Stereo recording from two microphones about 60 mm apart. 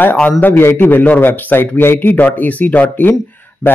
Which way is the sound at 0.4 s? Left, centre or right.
Left.